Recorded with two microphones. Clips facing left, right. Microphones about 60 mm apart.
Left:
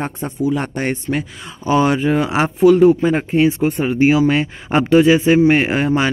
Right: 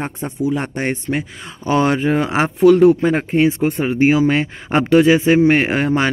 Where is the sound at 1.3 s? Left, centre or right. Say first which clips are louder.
Left 2 dB; right.